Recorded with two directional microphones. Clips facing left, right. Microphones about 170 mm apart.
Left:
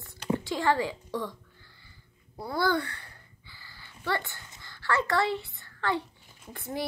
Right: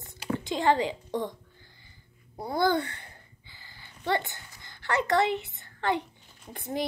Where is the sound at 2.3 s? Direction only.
20° right (ahead or behind).